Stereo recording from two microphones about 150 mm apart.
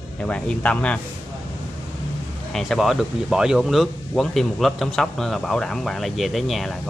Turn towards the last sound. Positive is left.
turn(degrees=0)  # may be behind; listen again after turning